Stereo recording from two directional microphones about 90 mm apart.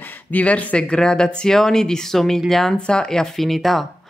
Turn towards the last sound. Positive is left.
turn(degrees=0)  # may be behind; listen again after turning